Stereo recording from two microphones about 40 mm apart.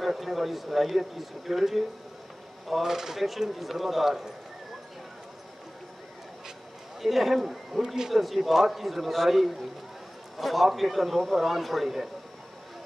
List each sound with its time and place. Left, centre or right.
0.0 s speech: centre
7.0 s a man's voice: centre
7.8 s speech: centre